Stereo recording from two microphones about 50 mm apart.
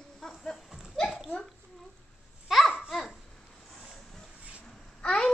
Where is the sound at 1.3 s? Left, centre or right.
Left.